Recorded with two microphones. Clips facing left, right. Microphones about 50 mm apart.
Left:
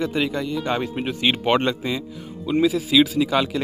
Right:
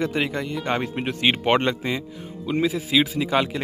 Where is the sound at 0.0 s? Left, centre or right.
Right.